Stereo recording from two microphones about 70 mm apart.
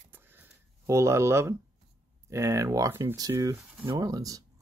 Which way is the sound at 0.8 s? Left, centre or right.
Right.